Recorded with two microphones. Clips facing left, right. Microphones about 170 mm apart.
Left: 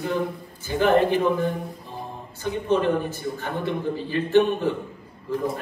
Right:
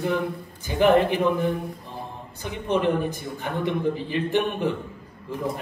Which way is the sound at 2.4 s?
15° right (ahead or behind).